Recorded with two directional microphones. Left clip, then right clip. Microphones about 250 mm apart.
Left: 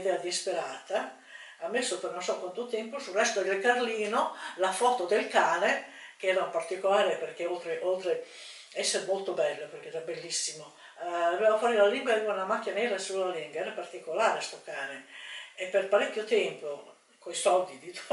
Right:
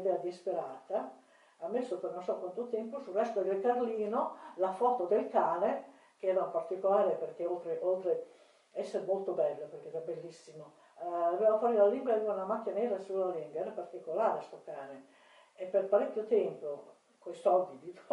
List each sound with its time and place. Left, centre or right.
0.0 s speech: centre
2.3 s speech: right
2.7 s speech: centre
8.7 s speech: centre
9.1 s speech: right
9.4 s speech: centre